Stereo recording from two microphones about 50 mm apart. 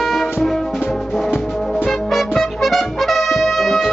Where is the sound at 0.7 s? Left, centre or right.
Centre.